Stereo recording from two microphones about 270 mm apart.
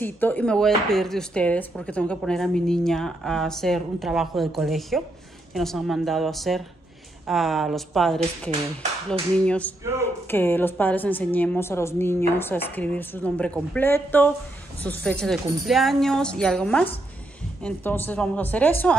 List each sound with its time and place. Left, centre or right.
0.0 s speech: centre
9.4 s a woman's voice: centre